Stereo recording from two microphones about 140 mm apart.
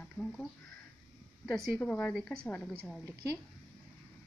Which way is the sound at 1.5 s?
5° left (ahead or behind).